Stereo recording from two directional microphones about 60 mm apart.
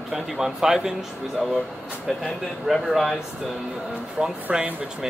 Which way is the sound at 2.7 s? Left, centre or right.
Centre.